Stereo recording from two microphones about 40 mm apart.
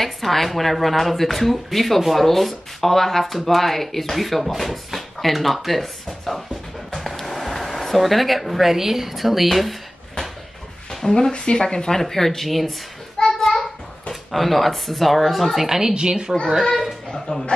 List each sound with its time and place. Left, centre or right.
0.0 s speech: centre
10.9 s speech: centre
13.3 s a sound: centre
14.3 s speech: centre
15.9 s a woman's voice: centre
16.6 s speech: centre
17.3 s a man's voice: left